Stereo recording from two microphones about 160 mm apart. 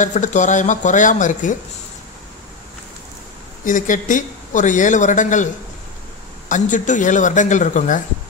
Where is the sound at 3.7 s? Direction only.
55° left (ahead or behind).